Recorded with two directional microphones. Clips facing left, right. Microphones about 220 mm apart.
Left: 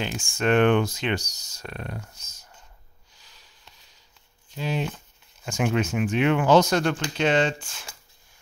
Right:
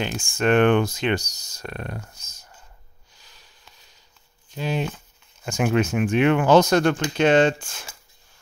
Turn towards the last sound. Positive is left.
turn(degrees=-50)  # may be behind; listen again after turning